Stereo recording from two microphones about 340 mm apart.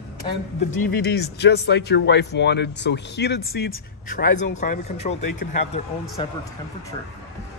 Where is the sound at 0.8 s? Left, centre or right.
Left.